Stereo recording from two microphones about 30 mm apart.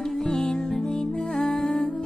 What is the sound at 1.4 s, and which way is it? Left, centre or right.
Music, centre.